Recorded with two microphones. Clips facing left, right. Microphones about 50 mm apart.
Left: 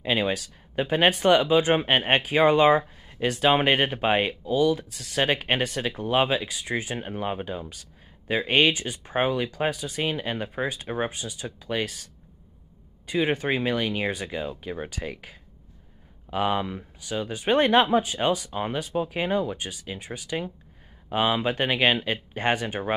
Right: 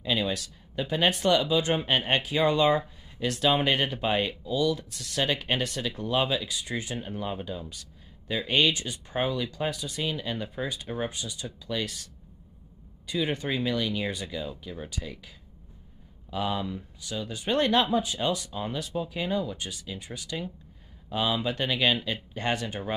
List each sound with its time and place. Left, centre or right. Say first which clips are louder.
0.0 s speech: left 3 dB; left
13.0 s speech: left 5 dB; left